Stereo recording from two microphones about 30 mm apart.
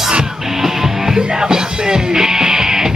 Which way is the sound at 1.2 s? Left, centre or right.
Right.